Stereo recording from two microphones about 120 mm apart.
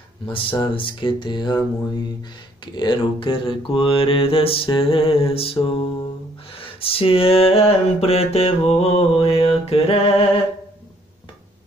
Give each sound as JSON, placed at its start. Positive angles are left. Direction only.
{"t": 0.3, "sound": "speech", "side_deg": 45}
{"t": 2.6, "sound": "mantra", "side_deg": 40}